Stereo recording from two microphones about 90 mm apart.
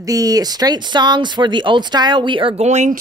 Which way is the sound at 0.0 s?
40° right (ahead or behind).